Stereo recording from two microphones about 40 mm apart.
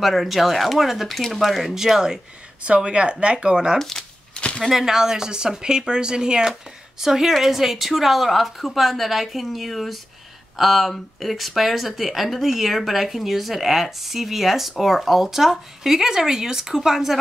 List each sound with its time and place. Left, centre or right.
0.0 s speech: centre
1.8 s speech: centre
2.6 s speech: right
3.7 s speech: centre
4.6 s speech: centre
7.0 s speech: centre